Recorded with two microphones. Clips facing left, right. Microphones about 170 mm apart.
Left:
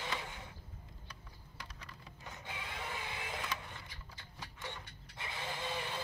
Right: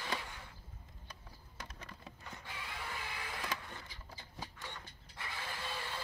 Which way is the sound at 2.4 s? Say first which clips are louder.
Left 2 dB; 20° left (ahead or behind).